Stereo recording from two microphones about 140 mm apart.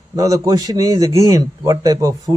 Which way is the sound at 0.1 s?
25° right (ahead or behind).